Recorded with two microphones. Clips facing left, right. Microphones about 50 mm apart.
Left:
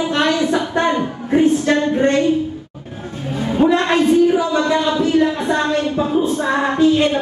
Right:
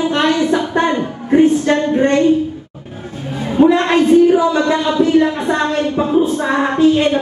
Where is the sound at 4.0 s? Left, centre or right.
Right.